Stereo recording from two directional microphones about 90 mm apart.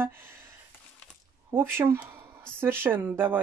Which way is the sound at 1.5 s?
25° right (ahead or behind).